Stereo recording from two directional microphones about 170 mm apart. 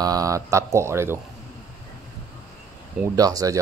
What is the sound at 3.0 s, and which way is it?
Speech, 20° right (ahead or behind).